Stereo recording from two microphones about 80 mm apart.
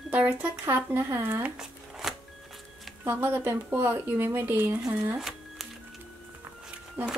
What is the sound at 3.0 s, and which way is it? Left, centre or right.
Speech, right.